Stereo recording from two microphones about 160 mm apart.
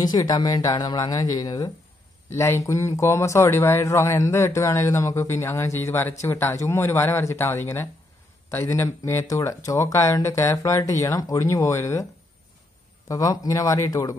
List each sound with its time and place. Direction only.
0.0 s speech: 25° left (ahead or behind)
13.1 s speech: 20° left (ahead or behind)